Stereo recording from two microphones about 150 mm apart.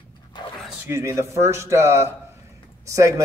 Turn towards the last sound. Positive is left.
turn(degrees=-20)  # may be behind; listen again after turning